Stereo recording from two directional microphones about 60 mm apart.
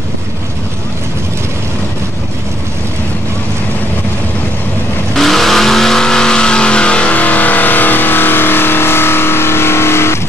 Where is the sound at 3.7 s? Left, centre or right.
Left.